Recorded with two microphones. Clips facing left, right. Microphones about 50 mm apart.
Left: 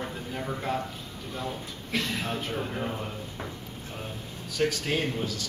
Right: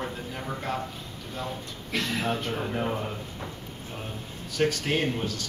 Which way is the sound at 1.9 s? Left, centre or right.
Centre.